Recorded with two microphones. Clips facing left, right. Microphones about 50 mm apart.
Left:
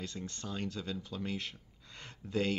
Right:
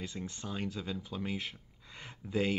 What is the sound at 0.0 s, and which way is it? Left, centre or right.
Speech, centre.